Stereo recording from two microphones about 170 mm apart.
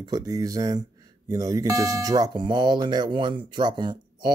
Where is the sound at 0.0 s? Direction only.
20° right (ahead or behind).